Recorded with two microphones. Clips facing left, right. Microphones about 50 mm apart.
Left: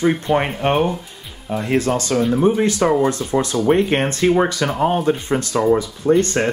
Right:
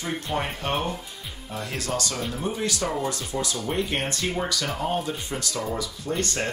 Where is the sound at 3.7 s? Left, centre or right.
Left.